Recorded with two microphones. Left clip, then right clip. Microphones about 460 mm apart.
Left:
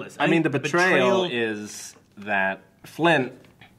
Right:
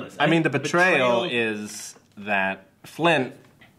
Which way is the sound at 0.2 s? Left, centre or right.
Centre.